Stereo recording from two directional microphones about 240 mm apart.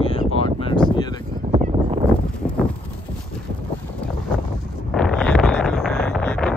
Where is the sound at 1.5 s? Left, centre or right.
Right.